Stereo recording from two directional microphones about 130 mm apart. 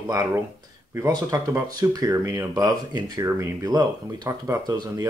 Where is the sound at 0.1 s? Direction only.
30° right (ahead or behind).